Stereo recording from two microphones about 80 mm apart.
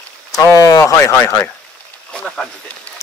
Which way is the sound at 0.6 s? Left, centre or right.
Left.